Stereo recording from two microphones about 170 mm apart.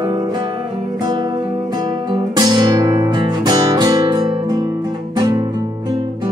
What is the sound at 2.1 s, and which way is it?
Guitar, 25° right (ahead or behind).